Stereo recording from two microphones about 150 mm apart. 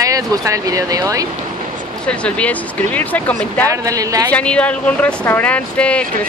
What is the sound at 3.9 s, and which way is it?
Speech, 25° right (ahead or behind).